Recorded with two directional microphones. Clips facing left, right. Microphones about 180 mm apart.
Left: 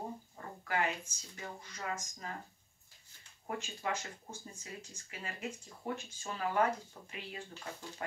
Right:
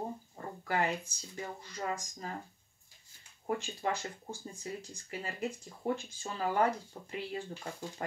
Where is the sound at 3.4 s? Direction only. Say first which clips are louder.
Right 5 dB; 35° right (ahead or behind).